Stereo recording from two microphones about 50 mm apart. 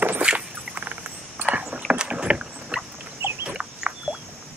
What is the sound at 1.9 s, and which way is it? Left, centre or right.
Rowboat, centre.